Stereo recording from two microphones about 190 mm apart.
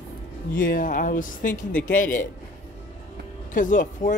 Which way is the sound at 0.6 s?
45° left (ahead or behind).